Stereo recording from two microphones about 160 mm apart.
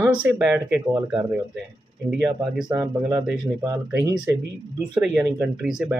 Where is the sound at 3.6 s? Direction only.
20° right (ahead or behind).